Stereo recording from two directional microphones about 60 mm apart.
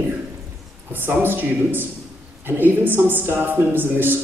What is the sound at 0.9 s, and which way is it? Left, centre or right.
Speech, right.